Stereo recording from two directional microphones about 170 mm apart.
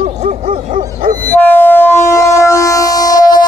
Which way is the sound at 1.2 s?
10° left (ahead or behind).